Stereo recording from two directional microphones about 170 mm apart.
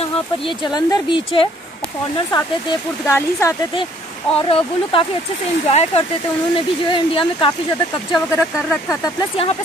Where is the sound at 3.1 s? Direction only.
15° left (ahead or behind).